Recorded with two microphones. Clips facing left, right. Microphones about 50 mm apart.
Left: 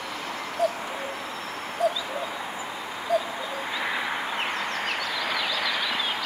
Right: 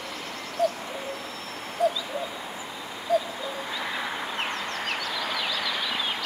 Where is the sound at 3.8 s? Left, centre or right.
Centre.